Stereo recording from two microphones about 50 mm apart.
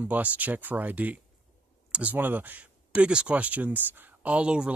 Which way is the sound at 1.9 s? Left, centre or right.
Right.